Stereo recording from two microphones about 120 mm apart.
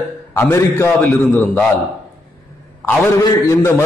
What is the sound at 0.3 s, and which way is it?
A man's voice, 20° left (ahead or behind).